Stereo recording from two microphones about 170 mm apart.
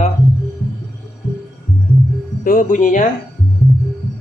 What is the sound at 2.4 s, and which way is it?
Speech, 55° left (ahead or behind).